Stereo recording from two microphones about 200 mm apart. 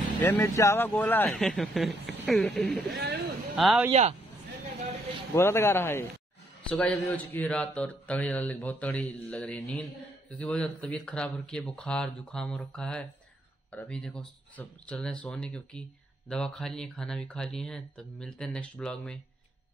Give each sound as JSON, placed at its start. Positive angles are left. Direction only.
{"t": 0.2, "sound": "speech", "side_deg": 15}
{"t": 2.9, "sound": "a sound", "side_deg": -55}
{"t": 3.5, "sound": "speech", "side_deg": 0}
{"t": 5.3, "sound": "speech", "side_deg": 15}